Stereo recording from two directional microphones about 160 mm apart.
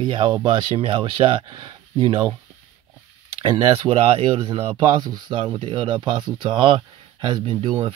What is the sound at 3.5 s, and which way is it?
Speech, 30° right (ahead or behind).